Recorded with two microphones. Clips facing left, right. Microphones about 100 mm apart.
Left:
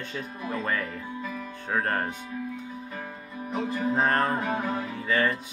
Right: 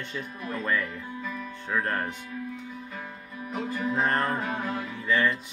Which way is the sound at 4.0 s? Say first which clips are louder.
Left 2 dB; 50° left (ahead or behind).